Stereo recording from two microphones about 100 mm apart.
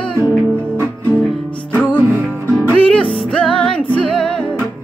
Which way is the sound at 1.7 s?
20° left (ahead or behind).